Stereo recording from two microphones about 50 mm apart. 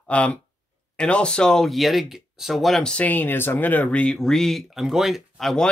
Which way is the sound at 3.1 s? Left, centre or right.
Left.